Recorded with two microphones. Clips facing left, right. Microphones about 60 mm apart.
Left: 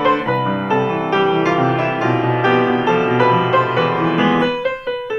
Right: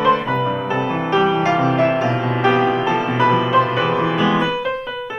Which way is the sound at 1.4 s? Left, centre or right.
Left.